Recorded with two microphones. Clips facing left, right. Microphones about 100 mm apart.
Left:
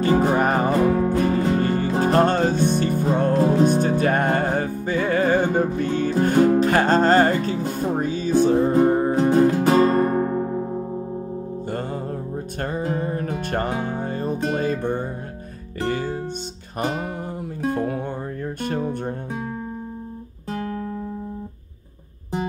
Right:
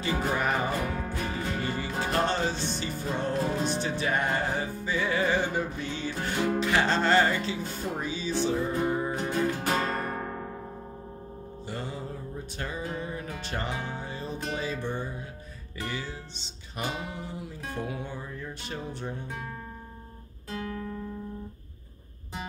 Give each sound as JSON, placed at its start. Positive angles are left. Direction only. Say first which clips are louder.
{"t": 0.2, "sound": "music", "louder": "left 9 dB", "side_deg": 40}
{"t": 1.1, "sound": "music", "louder": "left 12 dB", "side_deg": 40}
{"t": 10.1, "sound": "music", "louder": "left 13 dB", "side_deg": 25}
{"t": 11.6, "sound": "music", "louder": "left 6 dB", "side_deg": 50}
{"t": 20.4, "sound": "music", "louder": "left 7 dB", "side_deg": 40}